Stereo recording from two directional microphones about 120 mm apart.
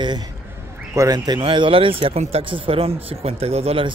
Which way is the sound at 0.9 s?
30° right (ahead or behind).